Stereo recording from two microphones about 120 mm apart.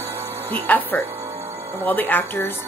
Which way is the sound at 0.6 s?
15° left (ahead or behind).